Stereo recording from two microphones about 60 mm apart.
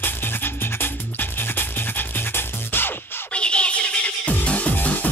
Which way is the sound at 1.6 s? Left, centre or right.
Left.